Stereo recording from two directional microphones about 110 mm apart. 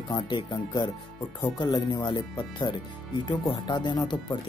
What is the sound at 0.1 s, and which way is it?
Speech, 40° left (ahead or behind).